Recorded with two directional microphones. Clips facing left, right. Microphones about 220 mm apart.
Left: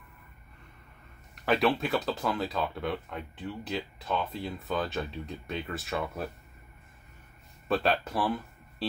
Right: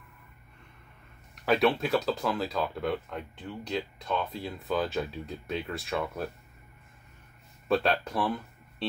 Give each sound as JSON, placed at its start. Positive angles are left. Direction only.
{"t": 1.3, "sound": "speech", "side_deg": 0}
{"t": 7.6, "sound": "speech", "side_deg": 0}